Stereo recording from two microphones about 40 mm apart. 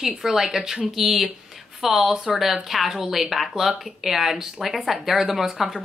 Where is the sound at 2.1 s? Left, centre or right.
Right.